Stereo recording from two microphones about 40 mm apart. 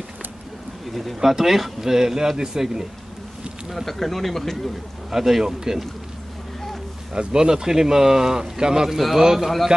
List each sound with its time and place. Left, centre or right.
0.9 s speech: centre
3.6 s speech: centre
5.1 s speech: centre
7.2 s a man's voice: centre